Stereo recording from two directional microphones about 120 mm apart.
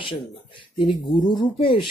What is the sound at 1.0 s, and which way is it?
Speech, 40° left (ahead or behind).